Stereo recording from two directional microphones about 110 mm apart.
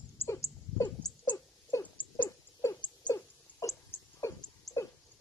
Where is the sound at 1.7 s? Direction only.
30° left (ahead or behind).